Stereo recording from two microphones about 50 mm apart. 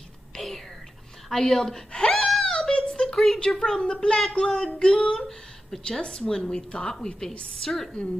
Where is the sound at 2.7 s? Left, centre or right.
Centre.